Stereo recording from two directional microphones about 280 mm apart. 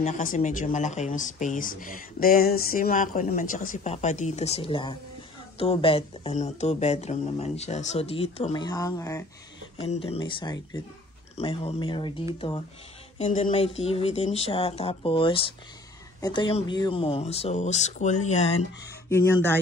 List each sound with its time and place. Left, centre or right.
0.0 s speech: left
19.0 s speech: centre